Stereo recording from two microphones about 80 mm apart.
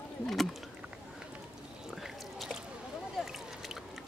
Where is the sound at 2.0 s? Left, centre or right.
Centre.